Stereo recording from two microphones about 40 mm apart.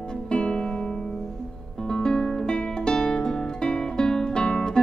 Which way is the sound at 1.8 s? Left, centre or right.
Centre.